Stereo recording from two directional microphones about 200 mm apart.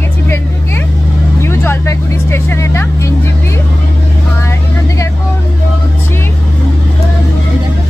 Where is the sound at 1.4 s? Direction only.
10° left (ahead or behind).